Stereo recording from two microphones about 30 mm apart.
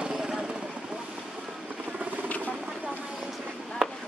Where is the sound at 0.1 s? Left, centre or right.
Centre.